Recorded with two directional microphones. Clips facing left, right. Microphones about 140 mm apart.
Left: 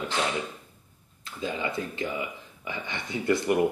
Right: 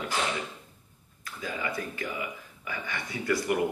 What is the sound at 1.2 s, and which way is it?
Speech, 25° left (ahead or behind).